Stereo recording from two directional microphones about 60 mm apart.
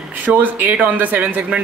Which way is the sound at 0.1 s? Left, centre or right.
Right.